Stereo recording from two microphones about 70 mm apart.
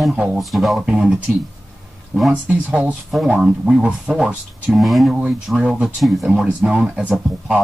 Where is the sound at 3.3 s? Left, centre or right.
Centre.